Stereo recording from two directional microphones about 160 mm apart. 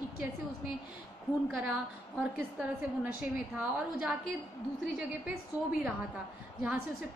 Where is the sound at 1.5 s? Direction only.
10° right (ahead or behind).